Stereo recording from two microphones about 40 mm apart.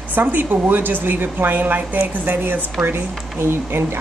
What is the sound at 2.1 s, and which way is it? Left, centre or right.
Speech, right.